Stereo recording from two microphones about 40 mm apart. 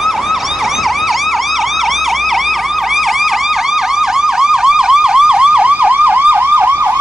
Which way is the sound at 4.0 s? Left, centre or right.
Centre.